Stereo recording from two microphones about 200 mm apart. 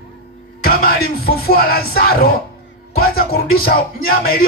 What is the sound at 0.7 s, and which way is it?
Speech, 50° left (ahead or behind).